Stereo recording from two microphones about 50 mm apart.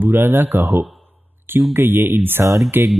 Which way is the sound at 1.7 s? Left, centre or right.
Right.